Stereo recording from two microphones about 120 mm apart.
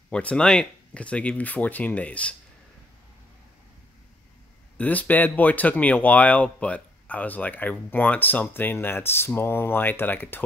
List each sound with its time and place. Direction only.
0.1 s speech: 10° left (ahead or behind)
4.7 s speech: 15° left (ahead or behind)